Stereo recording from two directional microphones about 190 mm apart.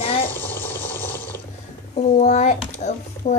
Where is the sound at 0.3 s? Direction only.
10° left (ahead or behind).